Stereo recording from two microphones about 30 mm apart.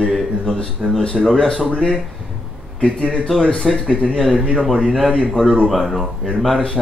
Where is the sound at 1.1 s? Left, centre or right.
Centre.